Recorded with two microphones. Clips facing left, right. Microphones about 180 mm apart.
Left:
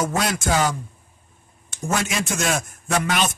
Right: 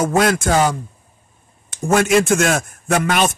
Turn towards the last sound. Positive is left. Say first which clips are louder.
# right 5 dB
turn(degrees=-55)  # may be behind; listen again after turning